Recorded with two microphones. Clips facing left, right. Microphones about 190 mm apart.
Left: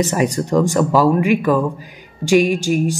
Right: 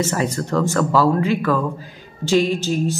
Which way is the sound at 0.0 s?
15° left (ahead or behind).